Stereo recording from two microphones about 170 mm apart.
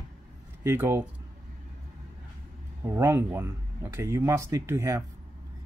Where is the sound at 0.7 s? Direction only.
15° right (ahead or behind).